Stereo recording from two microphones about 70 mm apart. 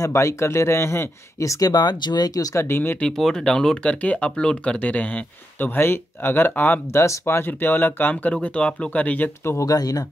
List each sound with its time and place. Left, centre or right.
0.0 s speech: left
1.4 s speech: left
1.7 s speech: left
2.6 s speech: left
3.2 s speech: centre; by 6.8 s left
6.9 s speech: left
9.4 s speech: left
9.7 s speech: left